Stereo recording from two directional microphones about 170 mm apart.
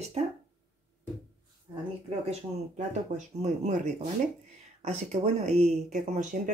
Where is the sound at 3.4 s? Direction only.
45° right (ahead or behind).